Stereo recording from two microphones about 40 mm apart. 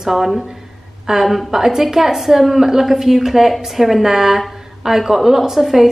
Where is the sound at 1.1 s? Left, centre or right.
Centre.